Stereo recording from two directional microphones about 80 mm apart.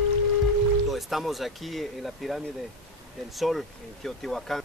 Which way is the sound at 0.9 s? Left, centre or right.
Centre.